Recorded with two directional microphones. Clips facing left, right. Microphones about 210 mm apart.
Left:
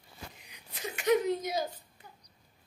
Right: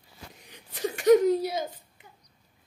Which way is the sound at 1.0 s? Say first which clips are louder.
Right 8 dB; 40° right (ahead or behind).